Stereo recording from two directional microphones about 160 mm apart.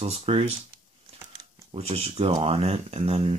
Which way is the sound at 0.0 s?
40° right (ahead or behind).